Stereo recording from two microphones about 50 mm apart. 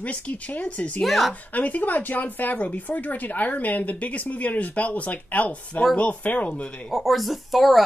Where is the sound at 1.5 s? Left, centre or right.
Left.